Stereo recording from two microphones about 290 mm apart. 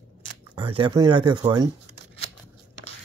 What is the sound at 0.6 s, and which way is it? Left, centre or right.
Speech, centre.